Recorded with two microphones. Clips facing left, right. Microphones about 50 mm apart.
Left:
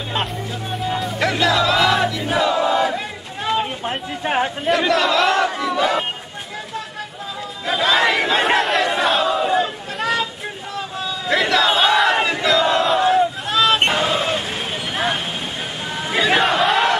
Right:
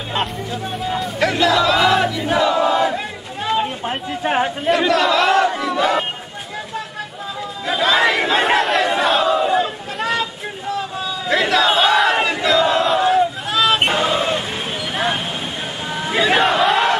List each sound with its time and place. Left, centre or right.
0.8 s battle cry: centre
3.4 s chatter: centre
7.6 s a sound: centre
10.7 s battle cry: centre
16.0 s crowd: centre